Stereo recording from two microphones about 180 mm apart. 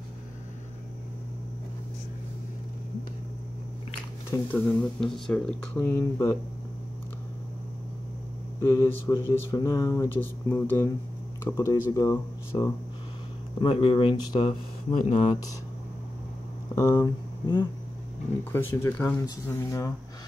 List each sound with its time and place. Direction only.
4.3 s speech: 10° left (ahead or behind)
8.5 s speech: 15° left (ahead or behind)
13.6 s speech: 30° left (ahead or behind)
16.7 s speech: 15° left (ahead or behind)